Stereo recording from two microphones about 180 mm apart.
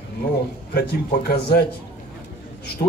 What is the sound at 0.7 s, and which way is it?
Speech, 60° left (ahead or behind).